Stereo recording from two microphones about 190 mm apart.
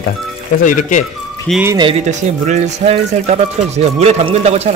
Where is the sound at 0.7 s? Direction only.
40° left (ahead or behind).